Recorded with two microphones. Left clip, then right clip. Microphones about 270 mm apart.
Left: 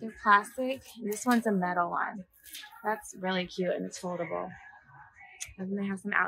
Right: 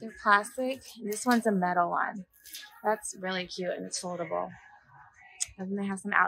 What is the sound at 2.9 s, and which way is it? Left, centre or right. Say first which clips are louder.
Speech: left 1 dB; centre.